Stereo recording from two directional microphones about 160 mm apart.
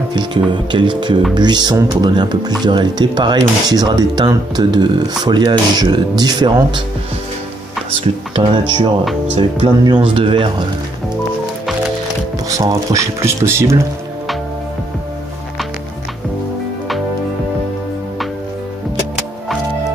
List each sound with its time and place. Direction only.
0.1 s speech: 30° right (ahead or behind)
7.9 s speech: 35° right (ahead or behind)
12.4 s speech: 20° right (ahead or behind)